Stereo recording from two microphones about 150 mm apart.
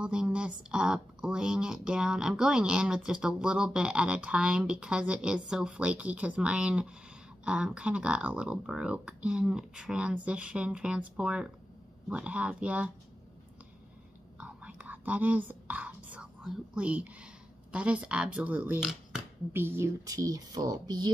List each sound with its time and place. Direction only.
0.0 s speech: 5° right (ahead or behind)
14.4 s speech: 10° right (ahead or behind); by 21.1 s 25° right (ahead or behind)